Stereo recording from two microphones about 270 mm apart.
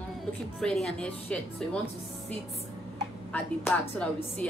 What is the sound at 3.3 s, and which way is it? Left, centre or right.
Speech, centre.